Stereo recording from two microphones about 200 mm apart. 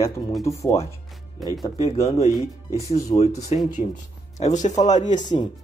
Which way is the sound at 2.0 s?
30° left (ahead or behind).